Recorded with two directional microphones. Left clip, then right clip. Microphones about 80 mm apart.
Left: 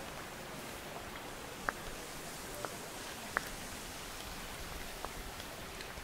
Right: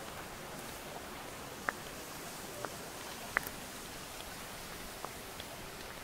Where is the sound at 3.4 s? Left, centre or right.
Centre.